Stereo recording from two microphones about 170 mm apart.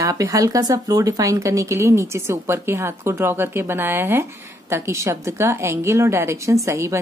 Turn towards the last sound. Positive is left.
turn(degrees=-15)  # may be behind; listen again after turning